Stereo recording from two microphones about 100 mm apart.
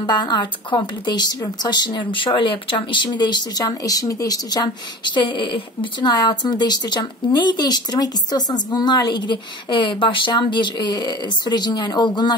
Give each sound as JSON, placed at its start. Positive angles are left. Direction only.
{"t": 0.0, "sound": "speech", "side_deg": 45}
{"t": 6.1, "sound": "speech", "side_deg": 40}